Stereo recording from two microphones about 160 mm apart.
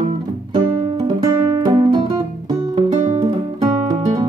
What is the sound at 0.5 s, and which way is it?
Music, 25° right (ahead or behind).